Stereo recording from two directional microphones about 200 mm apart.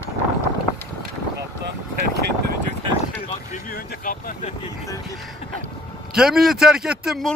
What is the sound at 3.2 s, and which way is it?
Vehicle, 40° left (ahead or behind).